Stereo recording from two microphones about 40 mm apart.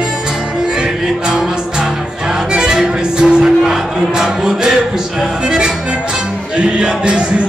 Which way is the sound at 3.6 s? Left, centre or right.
Centre.